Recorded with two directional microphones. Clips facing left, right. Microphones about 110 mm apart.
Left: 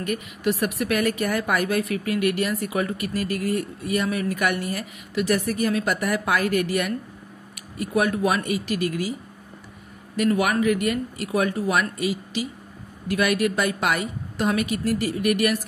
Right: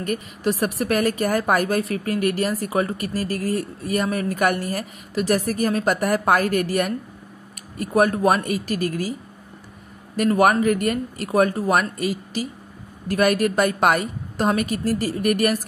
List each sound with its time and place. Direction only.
0.0 s a woman's voice: 40° right (ahead or behind)
10.1 s a woman's voice: 45° right (ahead or behind)